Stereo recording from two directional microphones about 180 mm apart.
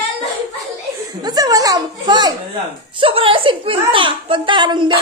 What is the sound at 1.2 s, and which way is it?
A child's voice, 20° right (ahead or behind).